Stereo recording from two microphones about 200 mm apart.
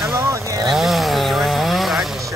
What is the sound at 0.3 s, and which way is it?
Vehicle, 15° right (ahead or behind).